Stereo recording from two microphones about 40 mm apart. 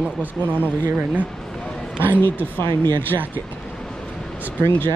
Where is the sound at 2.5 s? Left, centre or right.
Left.